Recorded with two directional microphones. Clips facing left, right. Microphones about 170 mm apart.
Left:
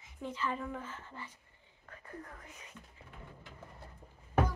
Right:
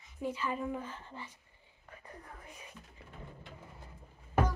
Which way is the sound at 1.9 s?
15° right (ahead or behind).